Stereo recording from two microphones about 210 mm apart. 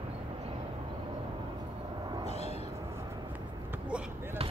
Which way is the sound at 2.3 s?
30° left (ahead or behind).